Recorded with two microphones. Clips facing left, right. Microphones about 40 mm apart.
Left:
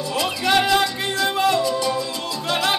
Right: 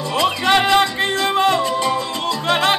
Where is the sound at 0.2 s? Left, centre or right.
Right.